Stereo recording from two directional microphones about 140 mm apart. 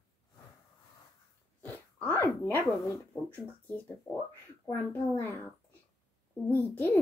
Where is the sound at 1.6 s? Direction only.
15° left (ahead or behind).